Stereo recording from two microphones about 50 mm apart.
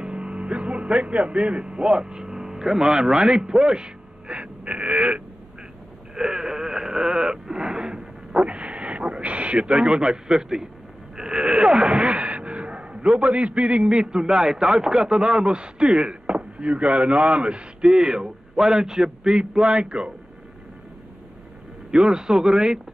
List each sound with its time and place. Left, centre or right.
0.0 s music: right
2.0 s speech: centre
6.1 s a sound: centre
11.1 s speech: centre
21.9 s speech: centre